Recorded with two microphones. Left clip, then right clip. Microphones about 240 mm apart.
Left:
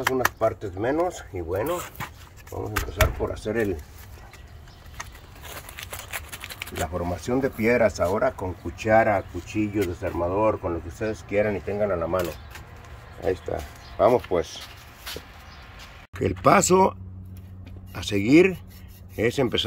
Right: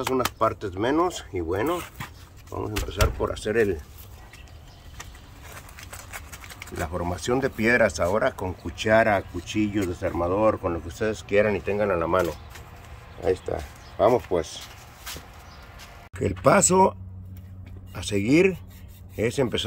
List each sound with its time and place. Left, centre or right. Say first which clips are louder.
0.1 s speech: even; centre
2.7 s speech: left 3 dB; centre
5.4 s a sound: left 5 dB; left
6.9 s speech: right 3 dB; centre
16.2 s speech: left 1 dB; centre
17.9 s speech: left 3 dB; centre